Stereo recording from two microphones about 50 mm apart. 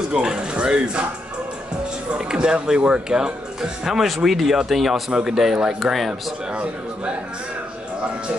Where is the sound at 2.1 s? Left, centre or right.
Centre.